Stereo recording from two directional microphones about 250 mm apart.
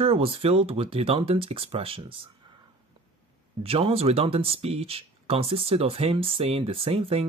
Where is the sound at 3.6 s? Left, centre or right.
Right.